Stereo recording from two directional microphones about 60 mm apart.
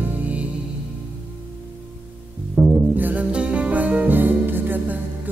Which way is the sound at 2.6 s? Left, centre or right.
Centre.